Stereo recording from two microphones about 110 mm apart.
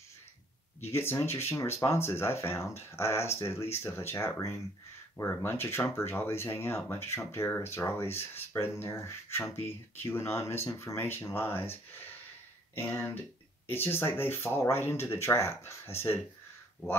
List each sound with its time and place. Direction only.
0.8 s speech: 20° left (ahead or behind)